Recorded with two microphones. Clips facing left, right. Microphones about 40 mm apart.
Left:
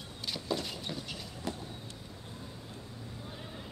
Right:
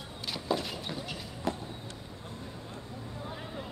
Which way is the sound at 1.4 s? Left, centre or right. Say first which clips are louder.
Right 6 dB; centre.